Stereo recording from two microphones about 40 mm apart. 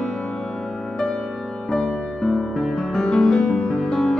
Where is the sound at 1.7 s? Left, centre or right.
Left.